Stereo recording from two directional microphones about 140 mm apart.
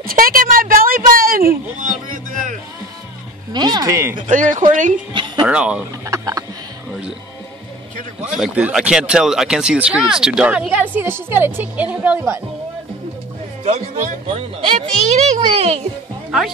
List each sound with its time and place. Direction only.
0.0 s a sound: 90° right; by 2.6 s 65° right (ahead or behind)
3.5 s speech: 30° right (ahead or behind)
4.3 s speech: 65° right (ahead or behind)
5.1 s speech: 30° right (ahead or behind)
5.5 s speech: 5° right (ahead or behind)
6.0 s speech: 20° right (ahead or behind)
8.3 s speech: 5° right (ahead or behind)
13.7 s speech: 50° right (ahead or behind)
16.3 s speech: 5° right (ahead or behind)